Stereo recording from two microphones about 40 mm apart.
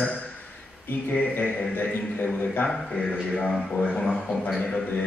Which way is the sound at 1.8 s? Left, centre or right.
Left.